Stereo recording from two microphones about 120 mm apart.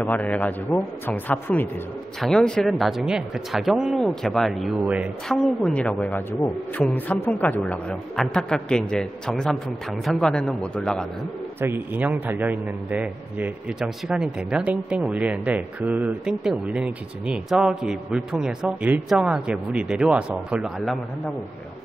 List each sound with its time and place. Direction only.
0.0 s a woman's voice: 15° left (ahead or behind)
11.6 s speech: 15° right (ahead or behind)